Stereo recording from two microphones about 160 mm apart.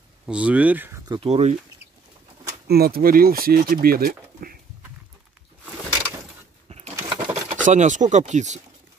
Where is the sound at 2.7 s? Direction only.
70° right (ahead or behind).